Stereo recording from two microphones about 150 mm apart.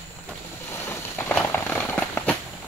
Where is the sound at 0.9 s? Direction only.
15° left (ahead or behind).